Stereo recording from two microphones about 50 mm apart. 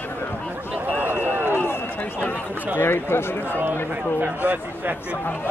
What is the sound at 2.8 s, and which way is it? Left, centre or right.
Speech, left.